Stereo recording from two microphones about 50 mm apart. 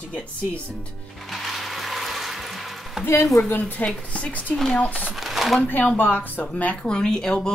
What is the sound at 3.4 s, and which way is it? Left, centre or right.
Speech, left.